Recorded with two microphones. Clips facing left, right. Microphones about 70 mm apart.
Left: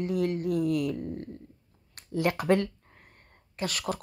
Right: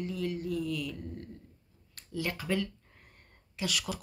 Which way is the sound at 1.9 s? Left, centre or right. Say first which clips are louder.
Left 8 dB; left.